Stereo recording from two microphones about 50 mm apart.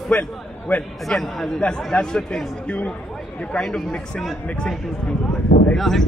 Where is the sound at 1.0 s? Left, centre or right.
Centre.